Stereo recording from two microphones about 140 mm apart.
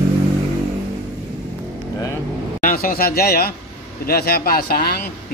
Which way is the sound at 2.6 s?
90° left.